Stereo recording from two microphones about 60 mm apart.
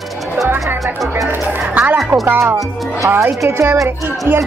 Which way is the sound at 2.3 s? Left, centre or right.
Right.